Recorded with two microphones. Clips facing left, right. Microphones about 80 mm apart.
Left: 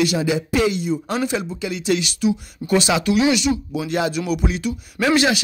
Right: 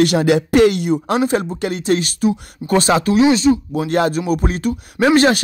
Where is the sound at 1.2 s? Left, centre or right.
Right.